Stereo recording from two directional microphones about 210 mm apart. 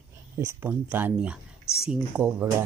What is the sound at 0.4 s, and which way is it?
Speech, 10° right (ahead or behind).